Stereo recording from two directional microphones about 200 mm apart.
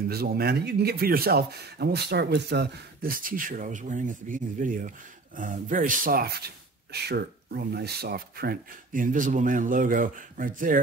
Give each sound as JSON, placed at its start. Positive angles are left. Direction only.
{"t": 0.1, "sound": "speech", "side_deg": -50}